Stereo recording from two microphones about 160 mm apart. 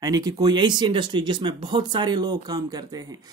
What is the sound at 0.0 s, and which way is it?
Speech, 25° right (ahead or behind).